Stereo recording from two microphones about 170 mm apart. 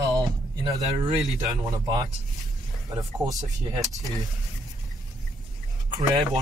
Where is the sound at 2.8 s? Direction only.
20° right (ahead or behind).